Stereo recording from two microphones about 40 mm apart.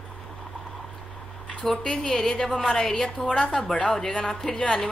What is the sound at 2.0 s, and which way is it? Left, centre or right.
A woman's voice, centre.